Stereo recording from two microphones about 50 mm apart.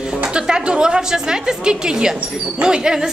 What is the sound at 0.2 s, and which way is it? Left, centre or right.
A woman's voice, centre.